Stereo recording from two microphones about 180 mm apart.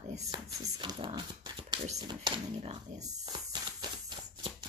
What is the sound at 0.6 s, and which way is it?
Speech, 25° right (ahead or behind).